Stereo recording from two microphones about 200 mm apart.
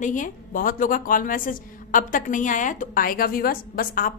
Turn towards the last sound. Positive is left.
turn(degrees=45)  # may be behind; listen again after turning